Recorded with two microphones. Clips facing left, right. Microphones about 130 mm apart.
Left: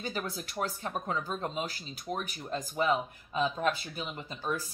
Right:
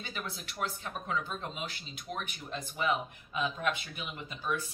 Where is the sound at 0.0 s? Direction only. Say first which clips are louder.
Left 5 dB; 40° left (ahead or behind).